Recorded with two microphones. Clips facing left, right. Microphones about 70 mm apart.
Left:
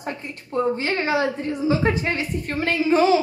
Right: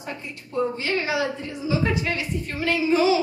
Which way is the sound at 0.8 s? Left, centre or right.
Left.